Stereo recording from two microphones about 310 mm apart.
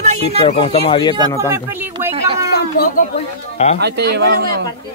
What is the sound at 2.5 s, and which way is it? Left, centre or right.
Speech, left.